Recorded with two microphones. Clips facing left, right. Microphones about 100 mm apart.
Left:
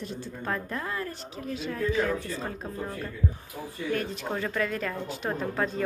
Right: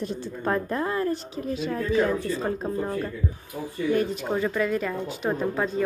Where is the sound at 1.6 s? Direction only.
35° right (ahead or behind).